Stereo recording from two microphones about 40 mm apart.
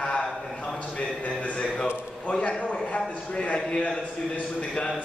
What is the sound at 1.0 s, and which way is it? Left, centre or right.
A man's voice, left.